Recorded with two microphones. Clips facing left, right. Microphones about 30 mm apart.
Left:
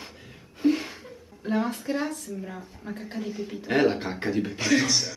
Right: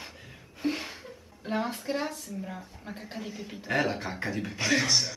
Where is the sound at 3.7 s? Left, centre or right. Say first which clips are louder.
Left 5 dB; centre.